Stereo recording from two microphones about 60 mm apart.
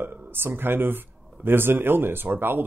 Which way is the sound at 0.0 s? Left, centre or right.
Right.